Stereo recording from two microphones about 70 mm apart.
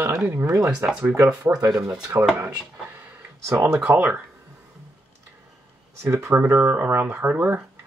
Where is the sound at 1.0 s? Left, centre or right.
Right.